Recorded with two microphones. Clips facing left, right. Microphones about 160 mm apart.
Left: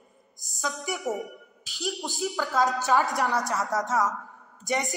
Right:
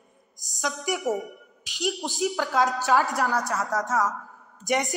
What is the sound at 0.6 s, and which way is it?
Speech, 15° right (ahead or behind).